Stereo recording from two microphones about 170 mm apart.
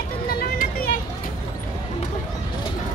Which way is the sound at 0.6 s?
55° left (ahead or behind).